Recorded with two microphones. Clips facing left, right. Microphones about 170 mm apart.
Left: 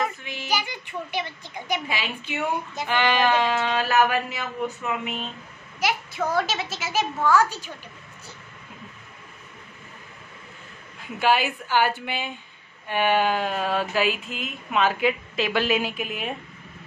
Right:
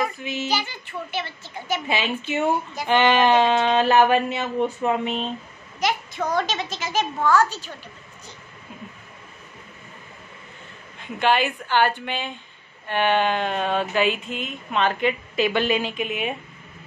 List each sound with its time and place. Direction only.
0.2 s speech: 20° right (ahead or behind)
0.5 s a child's voice: 15° left (ahead or behind)
1.9 s speech: 25° right (ahead or behind)
5.8 s a child's voice: 5° left (ahead or behind)
11.0 s a child's voice: 5° left (ahead or behind)